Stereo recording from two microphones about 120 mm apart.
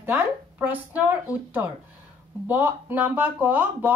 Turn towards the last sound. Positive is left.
turn(degrees=-15)  # may be behind; listen again after turning